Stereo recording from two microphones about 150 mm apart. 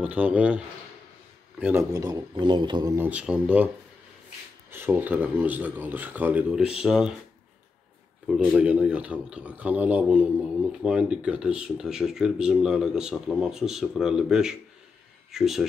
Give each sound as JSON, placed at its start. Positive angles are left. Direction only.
{"t": 0.0, "sound": "speech", "side_deg": -10}
{"t": 3.0, "sound": "speech", "side_deg": -10}
{"t": 8.5, "sound": "a man's voice", "side_deg": -10}